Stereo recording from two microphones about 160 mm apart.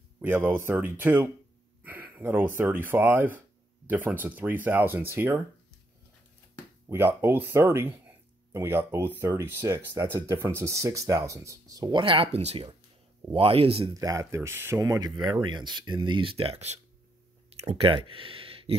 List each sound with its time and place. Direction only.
0.2 s speech: 10° right (ahead or behind)
6.9 s speech: 15° right (ahead or behind); by 13.9 s 35° right (ahead or behind)
13.9 s speech: 20° right (ahead or behind)